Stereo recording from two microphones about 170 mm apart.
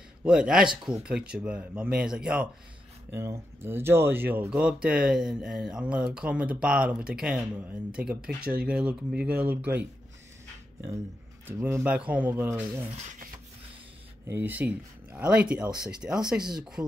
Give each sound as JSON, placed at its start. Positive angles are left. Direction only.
{"t": 0.2, "sound": "speech", "side_deg": -5}
{"t": 11.4, "sound": "speech", "side_deg": -10}
{"t": 12.8, "sound": "speech", "side_deg": -40}
{"t": 14.2, "sound": "speech", "side_deg": -10}
{"t": 15.6, "sound": "speech", "side_deg": -25}
{"t": 16.3, "sound": "speech", "side_deg": -5}